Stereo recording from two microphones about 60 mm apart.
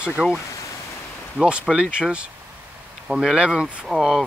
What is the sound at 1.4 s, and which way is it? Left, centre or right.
Speech, centre.